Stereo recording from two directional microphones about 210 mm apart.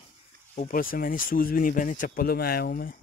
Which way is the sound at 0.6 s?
40° left (ahead or behind).